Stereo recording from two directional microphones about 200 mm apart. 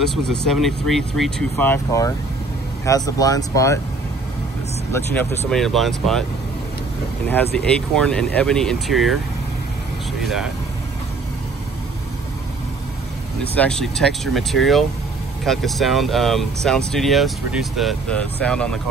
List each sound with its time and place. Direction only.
0.5 s speech: centre (ahead or behind)
4.9 s speech: 10° left (ahead or behind)
5.5 s speech: centre (ahead or behind)
7.5 s speech: 5° left (ahead or behind)
10.2 s speech: centre (ahead or behind)
13.4 s speech: 5° left (ahead or behind)